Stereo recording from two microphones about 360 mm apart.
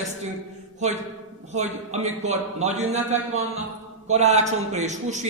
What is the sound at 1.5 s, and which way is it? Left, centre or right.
A man's voice, centre.